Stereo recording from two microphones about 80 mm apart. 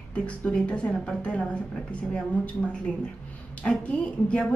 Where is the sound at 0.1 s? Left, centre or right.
Centre.